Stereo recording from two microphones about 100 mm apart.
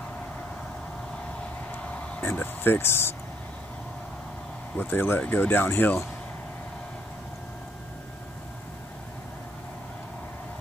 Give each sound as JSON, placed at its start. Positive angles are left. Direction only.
{"t": 1.7, "sound": "vehicle", "side_deg": 15}
{"t": 4.7, "sound": "speech", "side_deg": 20}